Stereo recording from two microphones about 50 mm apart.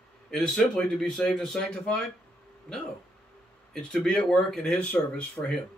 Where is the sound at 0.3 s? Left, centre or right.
Centre.